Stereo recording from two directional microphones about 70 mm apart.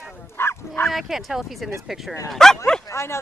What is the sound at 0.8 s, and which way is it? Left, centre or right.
Speech, centre.